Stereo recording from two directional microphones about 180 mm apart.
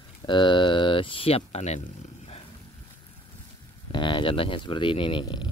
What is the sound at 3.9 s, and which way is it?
Speech, 25° left (ahead or behind).